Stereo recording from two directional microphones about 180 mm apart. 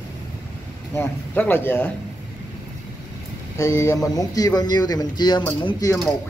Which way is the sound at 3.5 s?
15° left (ahead or behind).